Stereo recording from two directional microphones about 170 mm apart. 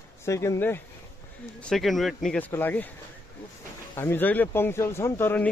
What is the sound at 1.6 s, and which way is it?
Speech, centre (ahead or behind).